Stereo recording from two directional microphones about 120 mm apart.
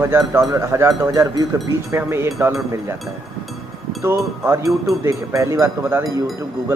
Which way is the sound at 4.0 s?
20° right (ahead or behind).